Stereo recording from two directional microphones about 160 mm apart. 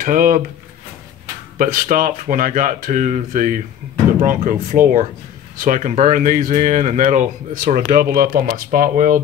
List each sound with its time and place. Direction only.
0.0 s speech: 60° right (ahead or behind)
1.6 s speech: 60° right (ahead or behind)